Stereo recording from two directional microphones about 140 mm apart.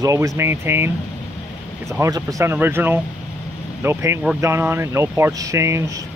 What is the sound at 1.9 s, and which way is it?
Speech, 25° right (ahead or behind).